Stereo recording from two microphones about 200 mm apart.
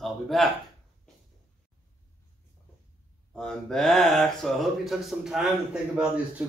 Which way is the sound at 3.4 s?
5° left (ahead or behind).